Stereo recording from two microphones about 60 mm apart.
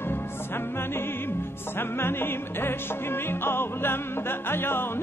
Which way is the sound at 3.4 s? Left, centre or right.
Left.